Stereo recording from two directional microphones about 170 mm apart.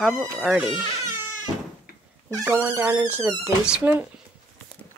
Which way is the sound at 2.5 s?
15° right (ahead or behind).